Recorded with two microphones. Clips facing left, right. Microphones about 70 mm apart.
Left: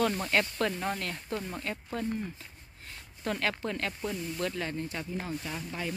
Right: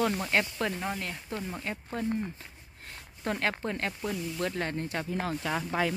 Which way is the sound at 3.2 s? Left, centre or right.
Right.